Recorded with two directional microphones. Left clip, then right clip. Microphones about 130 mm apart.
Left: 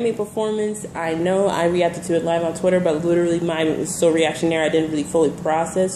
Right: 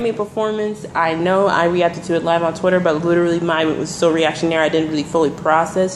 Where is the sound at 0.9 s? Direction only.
5° left (ahead or behind).